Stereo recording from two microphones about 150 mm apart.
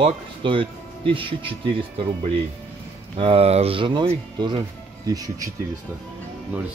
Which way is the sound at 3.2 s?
40° right (ahead or behind).